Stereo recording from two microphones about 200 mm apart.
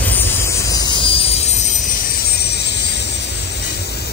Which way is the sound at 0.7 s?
20° left (ahead or behind).